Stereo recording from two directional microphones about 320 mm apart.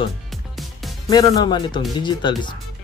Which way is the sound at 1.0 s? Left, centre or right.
Centre.